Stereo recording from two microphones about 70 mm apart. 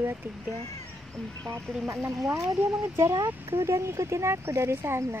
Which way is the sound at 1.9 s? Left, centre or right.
Right.